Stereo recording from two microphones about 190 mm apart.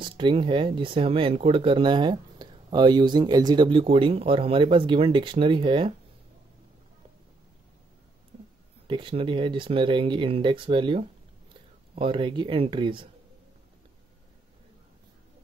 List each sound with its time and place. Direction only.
0.0 s speech: 25° right (ahead or behind)
8.8 s speech: 25° right (ahead or behind)